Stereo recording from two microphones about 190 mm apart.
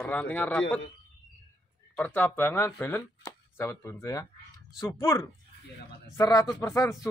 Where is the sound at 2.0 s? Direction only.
10° left (ahead or behind).